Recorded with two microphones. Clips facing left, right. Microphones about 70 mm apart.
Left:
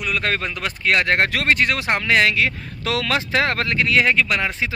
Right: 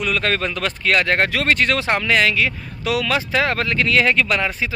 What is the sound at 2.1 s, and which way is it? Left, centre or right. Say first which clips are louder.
Speech: left 2 dB; left.